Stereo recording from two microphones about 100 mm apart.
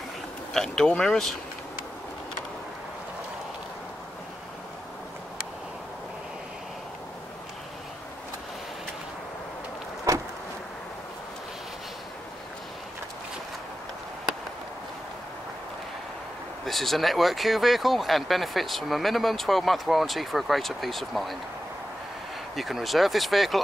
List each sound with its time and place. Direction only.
0.5 s speech: 5° left (ahead or behind)
10.1 s vehicle: 30° right (ahead or behind)
16.6 s speech: centre (ahead or behind)
22.6 s speech: centre (ahead or behind)